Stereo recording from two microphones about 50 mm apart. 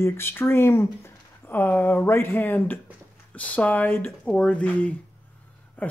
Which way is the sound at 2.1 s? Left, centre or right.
Left.